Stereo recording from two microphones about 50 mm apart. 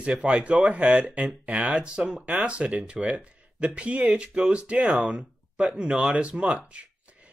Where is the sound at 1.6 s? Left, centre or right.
Centre.